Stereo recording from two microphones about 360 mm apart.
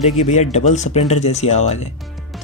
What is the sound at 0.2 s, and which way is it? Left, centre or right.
Speech, centre.